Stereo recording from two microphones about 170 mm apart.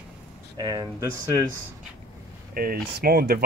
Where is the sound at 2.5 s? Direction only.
60° right (ahead or behind).